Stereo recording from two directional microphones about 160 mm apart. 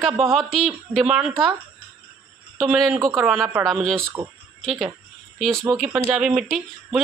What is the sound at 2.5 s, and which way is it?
Speech, centre (ahead or behind).